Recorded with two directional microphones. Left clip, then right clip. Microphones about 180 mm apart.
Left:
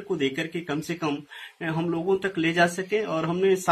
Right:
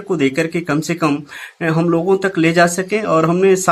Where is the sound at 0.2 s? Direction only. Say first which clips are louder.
Right 11 dB; 50° right (ahead or behind).